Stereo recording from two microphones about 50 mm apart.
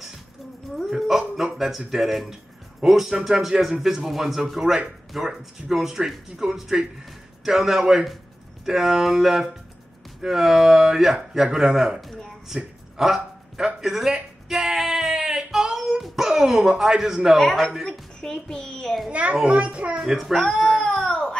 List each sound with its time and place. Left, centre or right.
0.8 s a sound: centre
2.8 s speech: centre
12.4 s dog: centre
13.7 s speech: centre
14.5 s a sound: centre
17.4 s a child's voice: centre
19.0 s a child's voice: right
20.0 s speech: centre
20.6 s baby cry: centre